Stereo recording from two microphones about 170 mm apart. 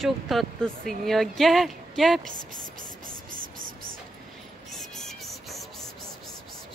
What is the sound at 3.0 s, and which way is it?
Music, 55° right (ahead or behind).